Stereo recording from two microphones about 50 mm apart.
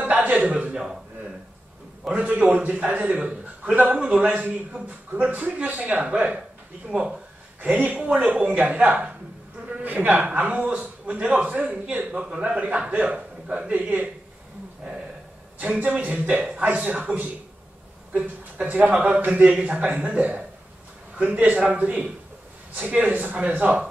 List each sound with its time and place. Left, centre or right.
0.0 s a man's voice: right
2.0 s a man's voice: right
5.3 s a man's voice: right
7.6 s a man's voice: right
15.6 s a man's voice: right
18.7 s a man's voice: right